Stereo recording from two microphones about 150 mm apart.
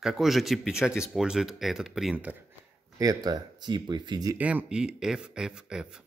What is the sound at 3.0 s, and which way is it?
Speech, 25° right (ahead or behind).